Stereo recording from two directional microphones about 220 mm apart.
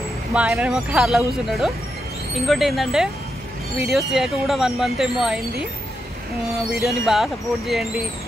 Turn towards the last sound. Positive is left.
turn(degrees=0)  # may be behind; listen again after turning